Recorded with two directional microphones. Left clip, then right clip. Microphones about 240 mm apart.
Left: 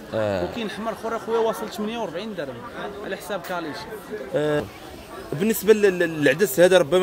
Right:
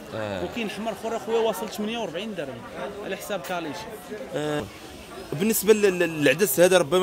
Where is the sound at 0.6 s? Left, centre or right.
Centre.